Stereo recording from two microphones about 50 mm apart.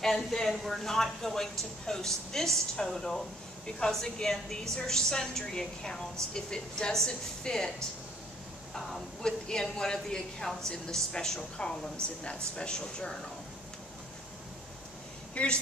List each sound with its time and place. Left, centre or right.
0.0 s speech: centre
8.7 s speech: centre
15.3 s a woman's voice: left